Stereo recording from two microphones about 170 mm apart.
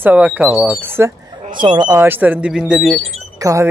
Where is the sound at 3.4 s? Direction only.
20° right (ahead or behind).